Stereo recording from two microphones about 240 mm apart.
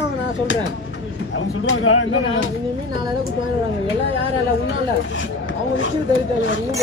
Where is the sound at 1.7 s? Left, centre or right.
Left.